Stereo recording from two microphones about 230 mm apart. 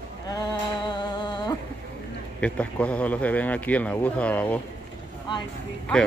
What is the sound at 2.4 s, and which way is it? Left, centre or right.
Speech, centre.